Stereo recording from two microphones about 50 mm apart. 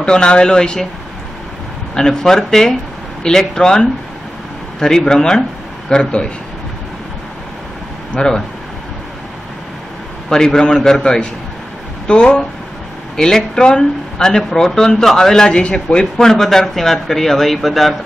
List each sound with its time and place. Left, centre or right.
0.0 s speech: centre
2.0 s speech: centre
8.1 s speech: centre
10.3 s speech: centre